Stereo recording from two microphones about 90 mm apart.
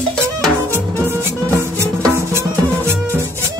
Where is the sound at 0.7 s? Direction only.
25° right (ahead or behind).